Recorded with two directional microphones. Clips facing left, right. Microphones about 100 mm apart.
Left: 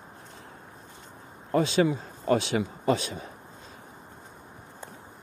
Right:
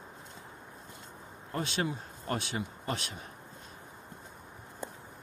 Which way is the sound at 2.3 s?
90° left.